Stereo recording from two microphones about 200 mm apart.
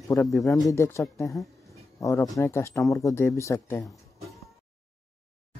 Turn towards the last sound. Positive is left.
turn(degrees=0)  # may be behind; listen again after turning